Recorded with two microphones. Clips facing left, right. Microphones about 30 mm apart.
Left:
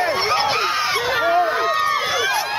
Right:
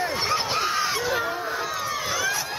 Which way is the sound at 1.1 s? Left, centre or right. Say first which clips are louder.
Left 9 dB; left.